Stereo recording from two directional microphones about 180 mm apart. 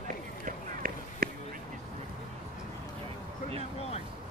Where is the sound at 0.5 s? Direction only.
50° right (ahead or behind).